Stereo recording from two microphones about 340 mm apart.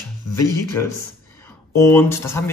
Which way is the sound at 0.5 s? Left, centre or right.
Centre.